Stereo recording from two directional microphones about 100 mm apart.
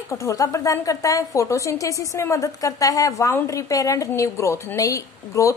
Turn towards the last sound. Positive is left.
turn(degrees=30)  # may be behind; listen again after turning